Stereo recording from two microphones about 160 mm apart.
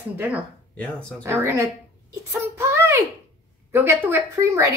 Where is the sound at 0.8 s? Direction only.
5° left (ahead or behind).